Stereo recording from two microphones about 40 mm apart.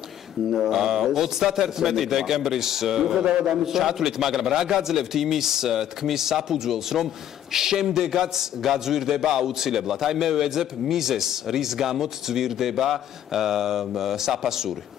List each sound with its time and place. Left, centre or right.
0.5 s a man's voice: centre
3.3 s a man's voice: right
3.6 s a man's voice: centre